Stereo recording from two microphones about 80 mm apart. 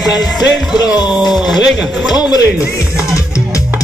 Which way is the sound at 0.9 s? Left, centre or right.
Centre.